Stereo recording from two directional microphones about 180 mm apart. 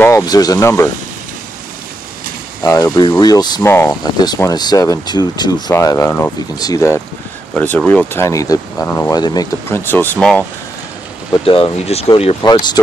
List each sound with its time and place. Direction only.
0.0 s speech: 20° left (ahead or behind)
2.6 s speech: 15° left (ahead or behind)
11.4 s speech: 30° left (ahead or behind)